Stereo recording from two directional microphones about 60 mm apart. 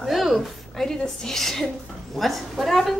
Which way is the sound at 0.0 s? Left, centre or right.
Centre.